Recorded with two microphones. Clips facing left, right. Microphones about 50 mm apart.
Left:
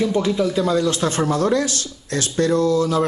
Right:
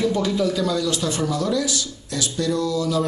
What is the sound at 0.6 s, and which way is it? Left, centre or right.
Speech, left.